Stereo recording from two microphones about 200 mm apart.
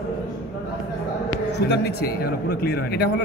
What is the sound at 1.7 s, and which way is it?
A man's voice, 55° left (ahead or behind).